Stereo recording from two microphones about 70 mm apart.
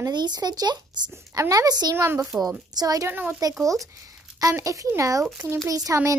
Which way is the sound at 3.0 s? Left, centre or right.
Right.